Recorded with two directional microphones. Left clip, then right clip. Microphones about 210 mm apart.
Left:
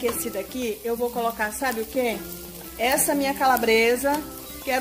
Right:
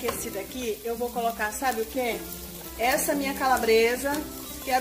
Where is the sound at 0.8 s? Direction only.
35° left (ahead or behind).